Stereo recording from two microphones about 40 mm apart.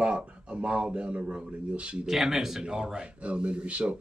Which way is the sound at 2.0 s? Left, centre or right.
Centre.